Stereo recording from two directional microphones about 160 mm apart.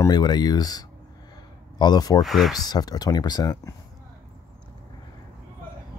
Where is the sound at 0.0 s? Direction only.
25° left (ahead or behind).